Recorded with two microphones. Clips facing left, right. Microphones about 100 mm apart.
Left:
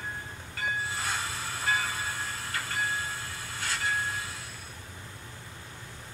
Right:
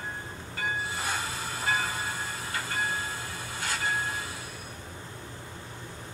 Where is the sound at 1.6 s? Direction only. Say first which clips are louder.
Right 1 dB; 5° right (ahead or behind).